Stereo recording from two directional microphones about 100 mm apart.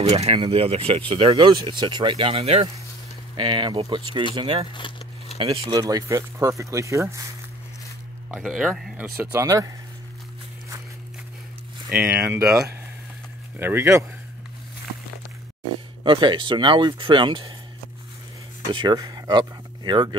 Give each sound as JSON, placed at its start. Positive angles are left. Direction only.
{"t": 0.1, "sound": "speech", "side_deg": -75}
{"t": 1.5, "sound": "speech", "side_deg": -50}
{"t": 3.3, "sound": "speech", "side_deg": -55}
{"t": 4.7, "sound": "speech", "side_deg": 55}
{"t": 5.7, "sound": "speech", "side_deg": -40}
{"t": 8.3, "sound": "speech", "side_deg": -5}
{"t": 9.2, "sound": "speech", "side_deg": -25}
{"t": 12.1, "sound": "speech", "side_deg": -25}
{"t": 13.6, "sound": "speech", "side_deg": -25}
{"t": 16.0, "sound": "speech", "side_deg": -55}
{"t": 18.7, "sound": "speech", "side_deg": -50}